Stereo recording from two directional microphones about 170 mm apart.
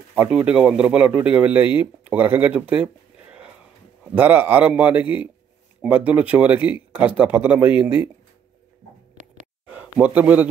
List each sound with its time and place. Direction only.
0.1 s a man's voice: 5° right (ahead or behind)
9.1 s a sound: 45° right (ahead or behind)
9.7 s speech: 10° right (ahead or behind)